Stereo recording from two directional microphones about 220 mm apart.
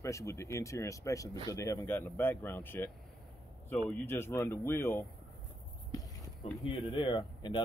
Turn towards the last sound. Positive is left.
turn(degrees=20)  # may be behind; listen again after turning